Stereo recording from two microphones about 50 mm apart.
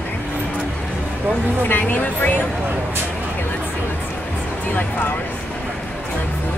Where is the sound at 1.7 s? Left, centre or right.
Left.